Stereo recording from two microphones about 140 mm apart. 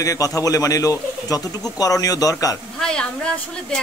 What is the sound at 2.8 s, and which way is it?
Speech, 5° left (ahead or behind).